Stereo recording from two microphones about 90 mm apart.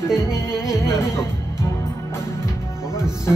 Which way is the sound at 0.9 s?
30° left (ahead or behind).